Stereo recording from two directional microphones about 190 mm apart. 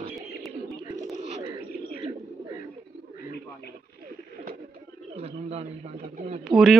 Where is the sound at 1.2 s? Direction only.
35° right (ahead or behind).